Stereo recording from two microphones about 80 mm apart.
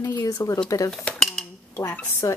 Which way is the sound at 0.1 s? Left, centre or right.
Left.